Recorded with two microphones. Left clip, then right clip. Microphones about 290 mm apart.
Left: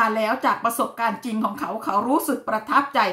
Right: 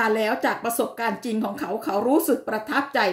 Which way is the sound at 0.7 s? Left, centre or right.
Left.